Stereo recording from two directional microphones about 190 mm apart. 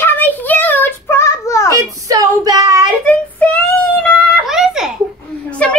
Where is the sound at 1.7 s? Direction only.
15° right (ahead or behind).